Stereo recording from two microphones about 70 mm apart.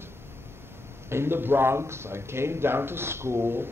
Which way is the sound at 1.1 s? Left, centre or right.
Right.